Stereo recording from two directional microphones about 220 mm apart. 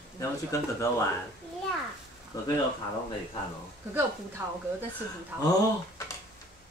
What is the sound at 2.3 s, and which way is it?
Speech, 15° left (ahead or behind).